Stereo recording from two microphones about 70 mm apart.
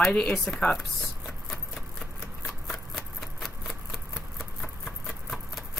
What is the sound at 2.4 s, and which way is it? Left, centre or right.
Shuffling cards, centre.